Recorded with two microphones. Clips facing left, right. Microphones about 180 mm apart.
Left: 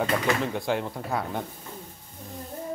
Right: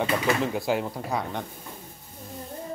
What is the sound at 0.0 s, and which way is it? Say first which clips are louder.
Speech: right 1 dB; 5° right (ahead or behind).